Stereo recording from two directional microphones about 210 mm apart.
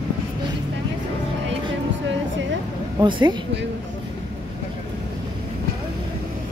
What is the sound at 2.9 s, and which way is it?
Speech, 20° right (ahead or behind).